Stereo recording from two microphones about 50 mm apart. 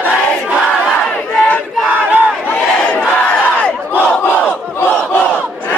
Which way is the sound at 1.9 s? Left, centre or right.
Right.